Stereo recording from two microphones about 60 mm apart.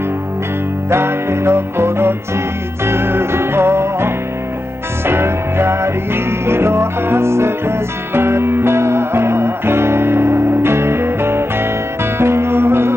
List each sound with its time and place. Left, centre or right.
0.8 s music: right